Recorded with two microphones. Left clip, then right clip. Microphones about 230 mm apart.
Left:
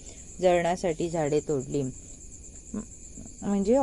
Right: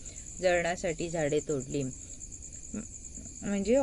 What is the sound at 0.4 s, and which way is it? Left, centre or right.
Speech, centre.